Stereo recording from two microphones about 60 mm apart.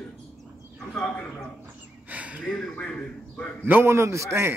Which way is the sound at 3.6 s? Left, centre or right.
Right.